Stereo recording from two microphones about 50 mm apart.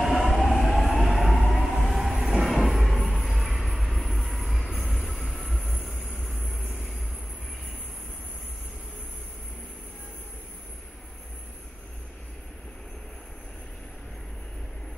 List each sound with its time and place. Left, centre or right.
0.0 s train: centre
5.6 s vehicle: left
6.4 s vehicle: centre